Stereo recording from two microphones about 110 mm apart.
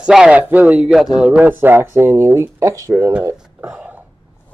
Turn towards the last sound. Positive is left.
turn(degrees=-20)  # may be behind; listen again after turning